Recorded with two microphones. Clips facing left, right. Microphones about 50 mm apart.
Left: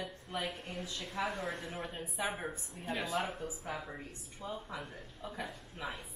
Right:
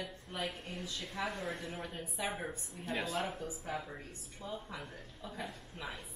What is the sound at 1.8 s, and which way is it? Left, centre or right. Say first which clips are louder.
Speech: left 2 dB; centre.